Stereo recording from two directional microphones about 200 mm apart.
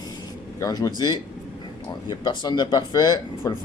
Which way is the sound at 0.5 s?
15° left (ahead or behind).